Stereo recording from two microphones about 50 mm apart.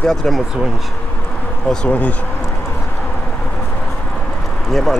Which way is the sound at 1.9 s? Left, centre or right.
Left.